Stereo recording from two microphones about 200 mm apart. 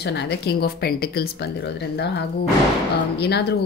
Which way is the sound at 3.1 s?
55° left (ahead or behind).